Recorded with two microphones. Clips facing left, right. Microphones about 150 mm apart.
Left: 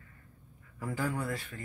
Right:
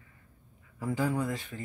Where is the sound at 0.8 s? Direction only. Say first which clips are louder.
Right 4 dB; 15° right (ahead or behind).